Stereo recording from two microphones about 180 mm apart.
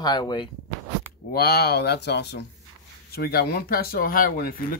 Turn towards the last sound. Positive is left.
turn(degrees=55)  # may be behind; listen again after turning